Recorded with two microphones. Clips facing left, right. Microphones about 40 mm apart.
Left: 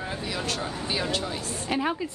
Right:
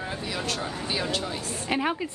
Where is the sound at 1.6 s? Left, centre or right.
Right.